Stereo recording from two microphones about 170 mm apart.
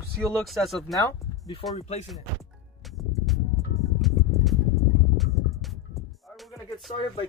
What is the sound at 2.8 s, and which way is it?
Music, centre (ahead or behind).